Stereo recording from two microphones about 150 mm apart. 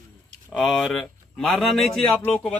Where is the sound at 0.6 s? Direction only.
Centre (ahead or behind).